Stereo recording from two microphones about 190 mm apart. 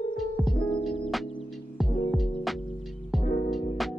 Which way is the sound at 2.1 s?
Centre (ahead or behind).